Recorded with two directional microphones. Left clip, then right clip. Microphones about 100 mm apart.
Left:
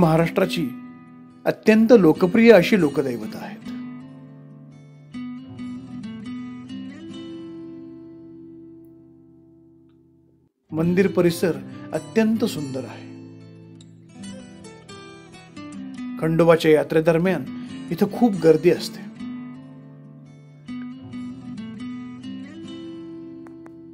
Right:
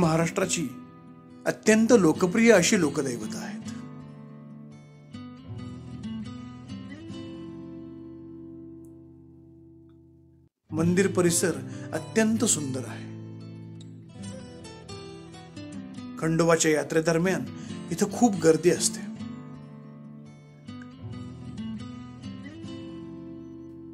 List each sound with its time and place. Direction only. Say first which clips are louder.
0.0 s speech: left 6 dB; 45° left (ahead or behind)
1.4 s speech: left 5 dB; 30° left (ahead or behind)
3.8 s music: left 7 dB; 30° right (ahead or behind)
5.2 s music: left 9 dB; 30° right (ahead or behind)
10.8 s speech: left 4 dB; 30° left (ahead or behind)
12.1 s music: left 3 dB; 25° left (ahead or behind)
16.3 s speech: left 7 dB; 45° left (ahead or behind)
20.7 s music: left 9 dB; 30° right (ahead or behind)